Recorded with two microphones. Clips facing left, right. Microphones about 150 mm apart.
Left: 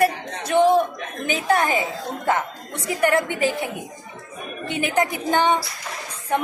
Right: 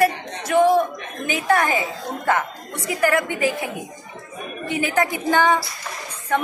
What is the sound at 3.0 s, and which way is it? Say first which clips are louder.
Speech: even; 25° left (ahead or behind).